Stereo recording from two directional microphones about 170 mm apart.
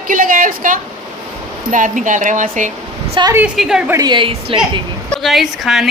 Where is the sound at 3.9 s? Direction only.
25° right (ahead or behind).